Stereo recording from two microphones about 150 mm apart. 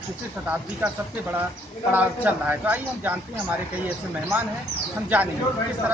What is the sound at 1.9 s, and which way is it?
Speech, 10° right (ahead or behind).